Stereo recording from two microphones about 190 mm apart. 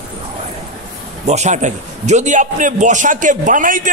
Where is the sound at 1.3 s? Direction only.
40° right (ahead or behind).